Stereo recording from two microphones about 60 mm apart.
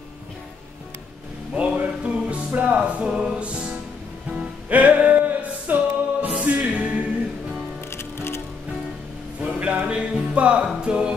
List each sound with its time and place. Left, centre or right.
1.5 s music: centre
7.9 s music: left
9.4 s a sound: centre
10.3 s music: centre